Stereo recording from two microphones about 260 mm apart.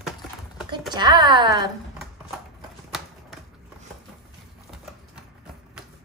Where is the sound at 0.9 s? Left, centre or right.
Centre.